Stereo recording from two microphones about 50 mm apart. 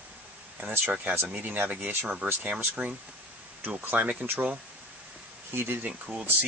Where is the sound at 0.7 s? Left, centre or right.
Right.